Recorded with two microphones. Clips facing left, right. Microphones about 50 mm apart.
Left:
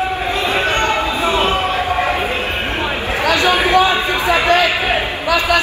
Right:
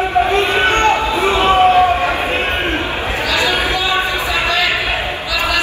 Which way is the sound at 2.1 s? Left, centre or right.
Right.